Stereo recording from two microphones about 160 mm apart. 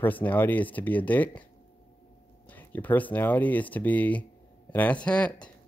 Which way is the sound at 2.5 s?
10° left (ahead or behind).